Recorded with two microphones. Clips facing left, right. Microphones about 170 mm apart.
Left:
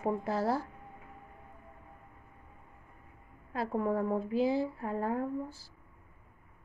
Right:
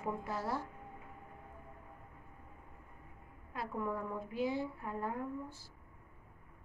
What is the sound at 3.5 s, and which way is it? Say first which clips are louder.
Speech: left 7 dB; 85° left.